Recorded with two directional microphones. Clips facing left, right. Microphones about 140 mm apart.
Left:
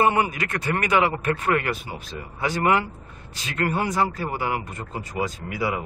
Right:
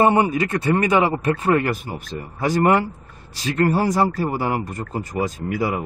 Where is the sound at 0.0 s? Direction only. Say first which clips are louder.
Right 4 dB; 30° right (ahead or behind).